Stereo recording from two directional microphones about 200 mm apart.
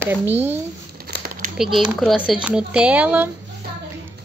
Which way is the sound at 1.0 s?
50° right (ahead or behind).